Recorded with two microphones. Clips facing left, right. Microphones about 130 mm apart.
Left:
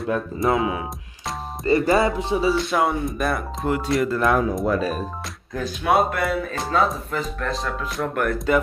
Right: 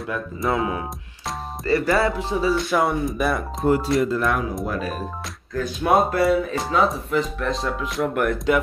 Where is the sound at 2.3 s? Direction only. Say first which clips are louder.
Left 1 dB; 15° left (ahead or behind).